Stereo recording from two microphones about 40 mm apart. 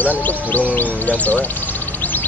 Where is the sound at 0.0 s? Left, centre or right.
Left.